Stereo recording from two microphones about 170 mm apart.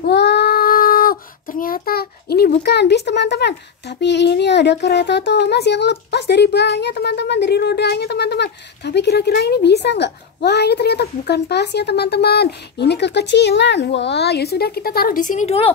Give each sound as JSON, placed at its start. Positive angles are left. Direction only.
{"t": 0.0, "sound": "child singing", "side_deg": 85}
{"t": 4.0, "sound": "a child's voice", "side_deg": 90}